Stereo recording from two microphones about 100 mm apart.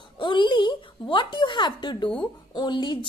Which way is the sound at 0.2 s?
55° left (ahead or behind).